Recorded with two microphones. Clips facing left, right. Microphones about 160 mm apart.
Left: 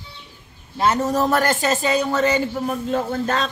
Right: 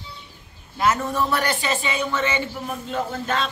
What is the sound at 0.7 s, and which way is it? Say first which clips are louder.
Speech: left 3 dB; 35° left (ahead or behind).